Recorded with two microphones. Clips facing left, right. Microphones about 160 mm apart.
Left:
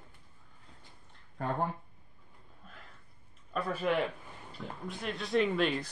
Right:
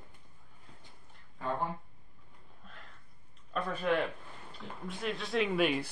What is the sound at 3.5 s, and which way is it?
Speech, 5° left (ahead or behind).